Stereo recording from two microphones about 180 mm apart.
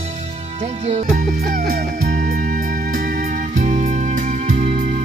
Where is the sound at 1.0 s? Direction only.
55° right (ahead or behind).